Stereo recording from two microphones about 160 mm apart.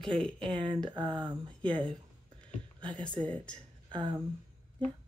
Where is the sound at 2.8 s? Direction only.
30° right (ahead or behind).